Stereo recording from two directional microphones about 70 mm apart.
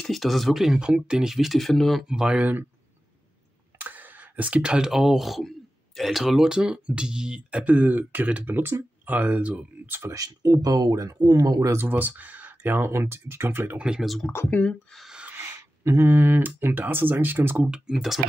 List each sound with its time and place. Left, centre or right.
0.0 s speech: centre
2.0 s speech: centre
3.7 s speech: right
9.8 s speech: right
10.1 s speech: right
11.0 s speech: right
11.6 s speech: right
13.7 s speech: centre
14.7 s speech: centre
15.2 s speech: right
17.6 s speech: centre